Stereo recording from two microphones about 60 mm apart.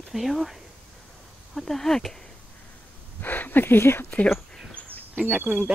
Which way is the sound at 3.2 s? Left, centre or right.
Left.